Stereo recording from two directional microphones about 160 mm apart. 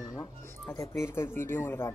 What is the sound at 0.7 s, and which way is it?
Speech, 15° left (ahead or behind).